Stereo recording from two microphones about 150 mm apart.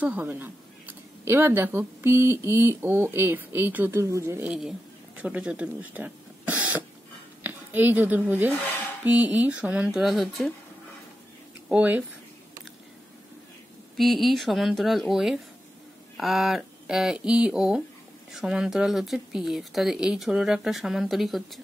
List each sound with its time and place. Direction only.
0.0 s speech: 10° right (ahead or behind)
4.5 s a woman's voice: 5° right (ahead or behind)
11.7 s speech: 10° right (ahead or behind)
13.9 s speech: centre (ahead or behind)